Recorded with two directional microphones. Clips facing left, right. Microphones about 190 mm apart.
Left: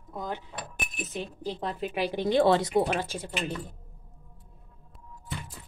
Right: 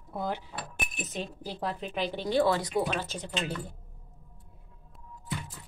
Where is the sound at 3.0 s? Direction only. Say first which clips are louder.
Left 3 dB; 10° left (ahead or behind).